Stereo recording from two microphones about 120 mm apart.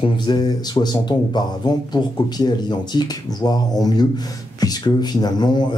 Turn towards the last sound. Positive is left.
turn(degrees=35)  # may be behind; listen again after turning